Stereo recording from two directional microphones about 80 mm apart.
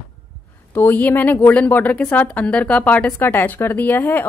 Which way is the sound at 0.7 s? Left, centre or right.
Left.